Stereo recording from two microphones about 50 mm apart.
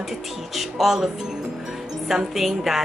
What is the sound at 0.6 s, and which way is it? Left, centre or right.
Speech, centre.